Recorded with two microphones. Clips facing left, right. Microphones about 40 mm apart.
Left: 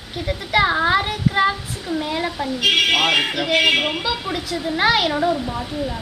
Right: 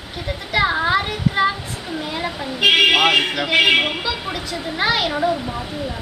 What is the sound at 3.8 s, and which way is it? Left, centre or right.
Speech, centre.